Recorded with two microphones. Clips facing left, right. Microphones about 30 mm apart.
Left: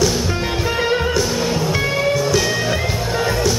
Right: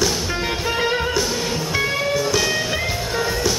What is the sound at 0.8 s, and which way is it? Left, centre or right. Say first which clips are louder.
Music: left 3 dB; centre.